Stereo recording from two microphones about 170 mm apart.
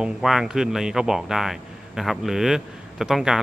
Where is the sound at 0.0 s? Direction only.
5° right (ahead or behind).